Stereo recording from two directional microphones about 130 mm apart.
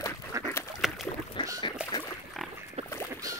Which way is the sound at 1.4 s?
35° left (ahead or behind).